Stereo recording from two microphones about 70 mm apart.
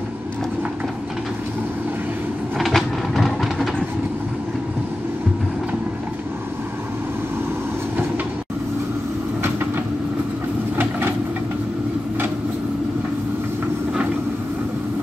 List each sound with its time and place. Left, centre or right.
2.6 s vehicle: centre
10.8 s vehicle: right